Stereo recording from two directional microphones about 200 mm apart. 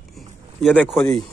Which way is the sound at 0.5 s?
Centre (ahead or behind).